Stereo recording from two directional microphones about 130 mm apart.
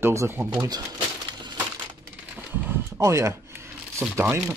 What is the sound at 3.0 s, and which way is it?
Speech, 20° right (ahead or behind).